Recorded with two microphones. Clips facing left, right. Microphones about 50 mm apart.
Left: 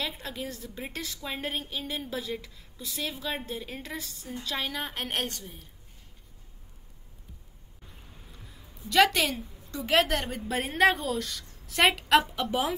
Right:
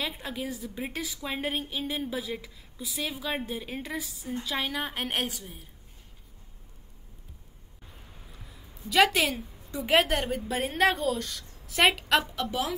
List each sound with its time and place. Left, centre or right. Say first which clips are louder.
0.0 s a woman's voice: right 1 dB; centre
8.8 s a woman's voice: even; centre
12.4 s speech: left 2 dB; left